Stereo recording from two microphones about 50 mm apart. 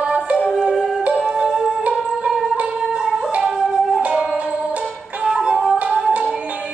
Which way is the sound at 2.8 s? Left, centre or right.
Centre.